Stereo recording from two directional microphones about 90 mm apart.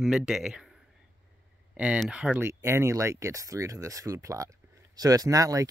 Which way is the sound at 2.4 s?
30° right (ahead or behind).